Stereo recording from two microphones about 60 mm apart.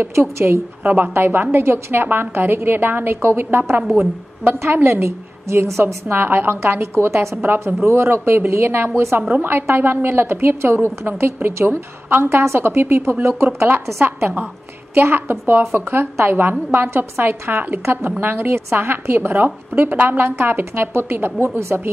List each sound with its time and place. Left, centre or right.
0.0 s a woman's voice: right
6.1 s a woman's voice: right